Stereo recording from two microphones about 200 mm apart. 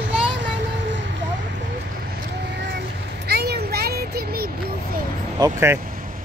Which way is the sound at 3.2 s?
50° right (ahead or behind).